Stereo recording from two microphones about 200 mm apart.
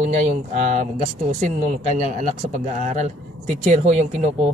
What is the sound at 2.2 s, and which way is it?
Speech, 35° right (ahead or behind).